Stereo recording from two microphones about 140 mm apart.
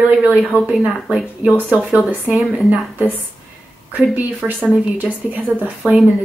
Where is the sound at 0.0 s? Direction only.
10° right (ahead or behind).